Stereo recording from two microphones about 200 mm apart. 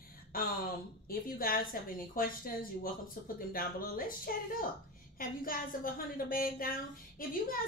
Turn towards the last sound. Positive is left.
turn(degrees=45)  # may be behind; listen again after turning